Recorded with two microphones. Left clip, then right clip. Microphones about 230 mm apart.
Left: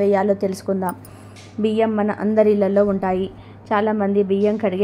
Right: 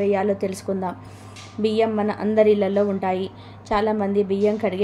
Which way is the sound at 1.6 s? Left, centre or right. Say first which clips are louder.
Left 1 dB; centre.